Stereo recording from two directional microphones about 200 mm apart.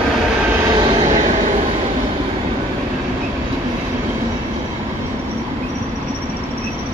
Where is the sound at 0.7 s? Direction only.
25° right (ahead or behind).